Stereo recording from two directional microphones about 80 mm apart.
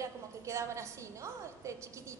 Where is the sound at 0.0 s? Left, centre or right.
Right.